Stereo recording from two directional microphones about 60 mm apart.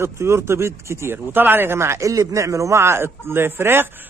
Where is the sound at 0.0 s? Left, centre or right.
Right.